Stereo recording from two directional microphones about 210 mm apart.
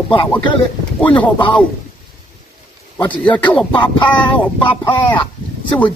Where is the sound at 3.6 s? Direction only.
20° left (ahead or behind).